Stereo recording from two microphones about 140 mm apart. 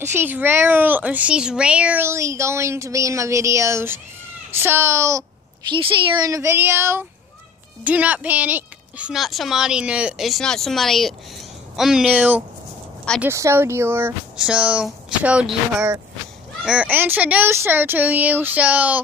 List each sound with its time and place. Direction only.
0.0 s speech: 15° right (ahead or behind)
5.7 s speech: 30° right (ahead or behind); by 14.1 s 15° right (ahead or behind)
14.3 s speech: 5° right (ahead or behind)